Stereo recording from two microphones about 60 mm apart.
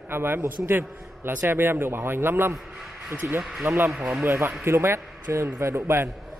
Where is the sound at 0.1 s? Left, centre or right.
Right.